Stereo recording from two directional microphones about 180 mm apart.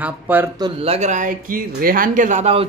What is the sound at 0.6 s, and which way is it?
Speech, 30° right (ahead or behind).